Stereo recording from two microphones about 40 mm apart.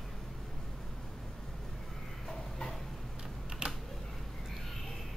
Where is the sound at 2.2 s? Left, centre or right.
Centre.